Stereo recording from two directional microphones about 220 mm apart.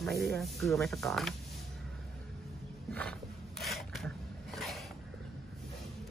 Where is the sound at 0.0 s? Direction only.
Centre (ahead or behind).